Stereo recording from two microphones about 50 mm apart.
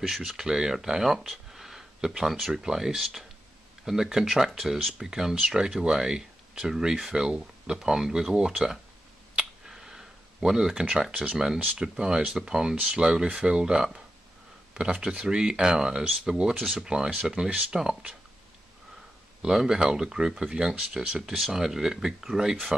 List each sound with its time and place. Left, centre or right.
0.0 s speech: centre
9.3 s a sound: centre
11.8 s speech: centre
19.4 s speech: centre